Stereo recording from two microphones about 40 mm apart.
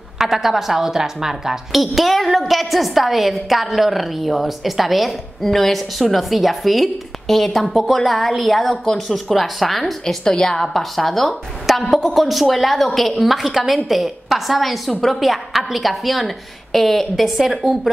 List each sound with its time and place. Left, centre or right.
0.2 s speech: centre
1.8 s a woman's voice: centre
10.2 s a woman's voice: centre
10.7 s a woman's voice: centre